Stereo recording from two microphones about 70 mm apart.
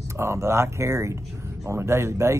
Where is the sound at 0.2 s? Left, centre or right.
Right.